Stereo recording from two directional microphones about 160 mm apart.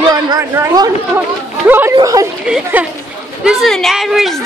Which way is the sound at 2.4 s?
5° right (ahead or behind).